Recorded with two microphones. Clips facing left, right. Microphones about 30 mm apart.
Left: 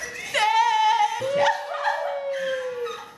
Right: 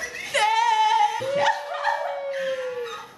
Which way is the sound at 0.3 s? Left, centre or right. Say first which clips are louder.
Even; centre.